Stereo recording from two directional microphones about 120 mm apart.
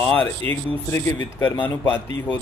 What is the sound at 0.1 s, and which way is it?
Speech, 15° left (ahead or behind).